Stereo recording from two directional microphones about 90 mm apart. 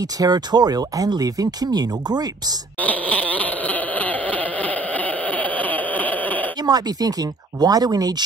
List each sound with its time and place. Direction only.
0.0 s speech: 45° right (ahead or behind)
2.8 s a sound: 15° left (ahead or behind)
6.6 s speech: 45° right (ahead or behind)